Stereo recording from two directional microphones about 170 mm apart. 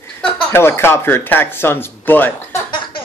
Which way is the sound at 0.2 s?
15° left (ahead or behind).